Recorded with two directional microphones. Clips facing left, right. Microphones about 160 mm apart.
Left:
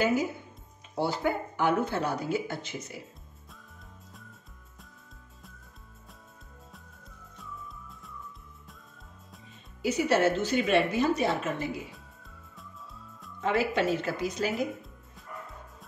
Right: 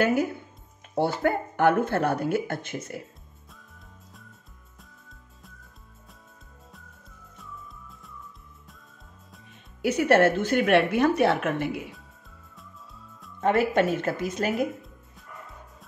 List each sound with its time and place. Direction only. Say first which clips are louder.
0.0 s a woman's voice: right 3 dB; 60° right (ahead or behind)
7.3 s music: left 1 dB; centre (ahead or behind)
9.5 s a woman's voice: right 4 dB; 60° right (ahead or behind)
12.5 s music: left 1 dB; centre (ahead or behind)
13.4 s speech: right 5 dB; 50° right (ahead or behind)